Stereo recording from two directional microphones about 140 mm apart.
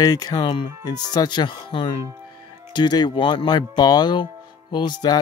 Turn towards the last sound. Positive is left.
turn(degrees=30)  # may be behind; listen again after turning